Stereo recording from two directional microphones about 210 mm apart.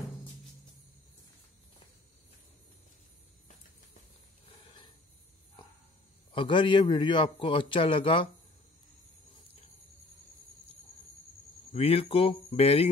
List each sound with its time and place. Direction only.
4.5 s a sound: 25° left (ahead or behind)
6.3 s a man's voice: 25° left (ahead or behind)
11.7 s a man's voice: 30° left (ahead or behind)